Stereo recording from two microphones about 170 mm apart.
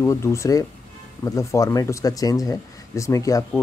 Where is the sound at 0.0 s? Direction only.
15° left (ahead or behind).